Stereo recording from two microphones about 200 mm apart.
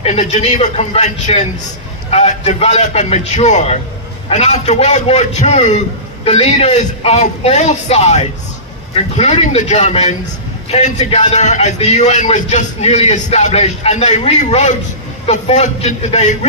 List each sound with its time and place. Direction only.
0.0 s a man's voice: 35° left (ahead or behind)